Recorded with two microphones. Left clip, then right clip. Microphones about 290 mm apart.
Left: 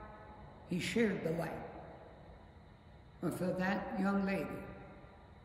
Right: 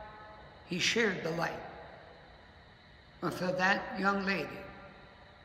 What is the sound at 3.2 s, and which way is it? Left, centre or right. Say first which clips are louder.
A man's voice: right 7 dB; centre.